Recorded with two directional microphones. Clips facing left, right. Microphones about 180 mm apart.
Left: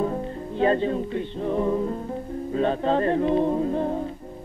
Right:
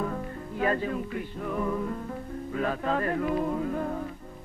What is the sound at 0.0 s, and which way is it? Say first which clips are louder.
Music: left 6 dB; 25° left (ahead or behind).